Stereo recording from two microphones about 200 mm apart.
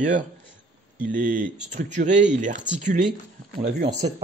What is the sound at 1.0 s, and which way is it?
Speech, 40° right (ahead or behind).